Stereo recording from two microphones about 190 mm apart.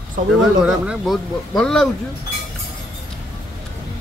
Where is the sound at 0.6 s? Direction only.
5° right (ahead or behind).